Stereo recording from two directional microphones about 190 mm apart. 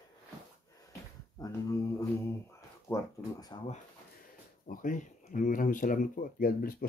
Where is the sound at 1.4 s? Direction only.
20° left (ahead or behind).